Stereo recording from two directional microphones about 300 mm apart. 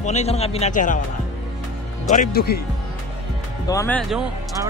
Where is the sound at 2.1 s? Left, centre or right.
Left.